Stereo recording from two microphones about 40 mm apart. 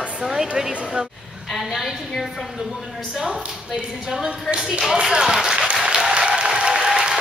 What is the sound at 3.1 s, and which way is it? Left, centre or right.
A woman's voice, centre.